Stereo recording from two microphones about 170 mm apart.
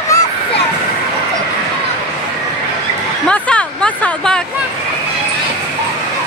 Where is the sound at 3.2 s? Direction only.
5° left (ahead or behind).